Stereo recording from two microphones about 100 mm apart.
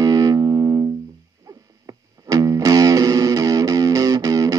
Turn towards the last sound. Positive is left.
turn(degrees=-35)  # may be behind; listen again after turning